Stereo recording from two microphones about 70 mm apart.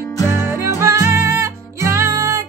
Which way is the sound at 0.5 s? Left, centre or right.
Right.